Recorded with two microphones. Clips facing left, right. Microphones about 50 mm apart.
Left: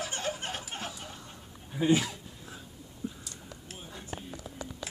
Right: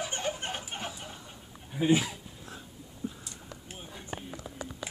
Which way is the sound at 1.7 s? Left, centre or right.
Centre.